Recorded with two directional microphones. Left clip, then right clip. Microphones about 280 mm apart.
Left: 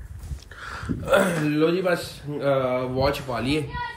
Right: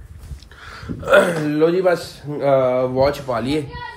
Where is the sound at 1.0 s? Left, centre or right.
Right.